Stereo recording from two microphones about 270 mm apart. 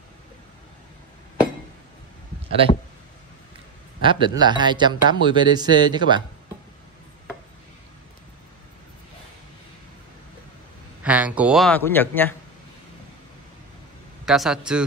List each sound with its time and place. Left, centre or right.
4.0 s a man's voice: centre
11.0 s speech: centre
14.2 s speech: centre